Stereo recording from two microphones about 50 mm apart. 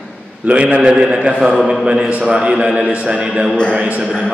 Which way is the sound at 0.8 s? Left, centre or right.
Centre.